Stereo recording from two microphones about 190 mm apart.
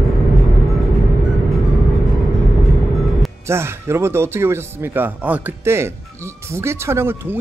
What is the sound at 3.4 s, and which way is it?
Speech, 15° right (ahead or behind).